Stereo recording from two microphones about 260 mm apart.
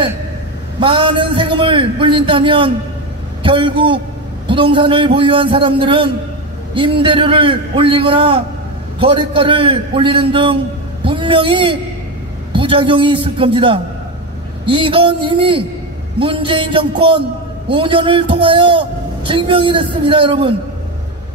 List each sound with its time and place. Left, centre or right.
0.7 s a man's voice: centre